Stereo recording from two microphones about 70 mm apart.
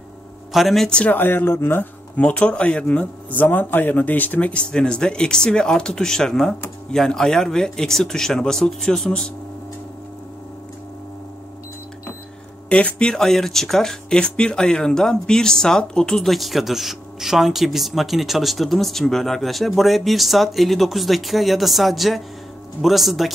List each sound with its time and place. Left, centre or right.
0.5 s speech: centre
0.8 s speech: centre
1.1 s speech: left
2.1 s speech: centre
12.6 s speech: centre